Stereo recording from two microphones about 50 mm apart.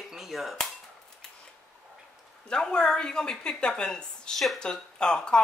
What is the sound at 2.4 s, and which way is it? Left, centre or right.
A woman's voice, centre.